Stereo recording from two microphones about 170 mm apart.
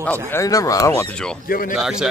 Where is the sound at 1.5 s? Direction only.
55° left (ahead or behind).